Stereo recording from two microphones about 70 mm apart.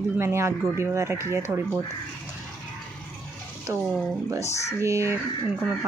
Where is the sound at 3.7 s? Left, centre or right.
Right.